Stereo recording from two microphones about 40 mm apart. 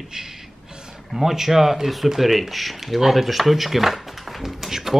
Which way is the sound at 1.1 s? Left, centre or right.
Centre.